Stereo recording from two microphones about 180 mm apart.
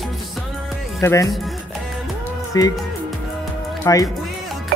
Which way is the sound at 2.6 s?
20° left (ahead or behind).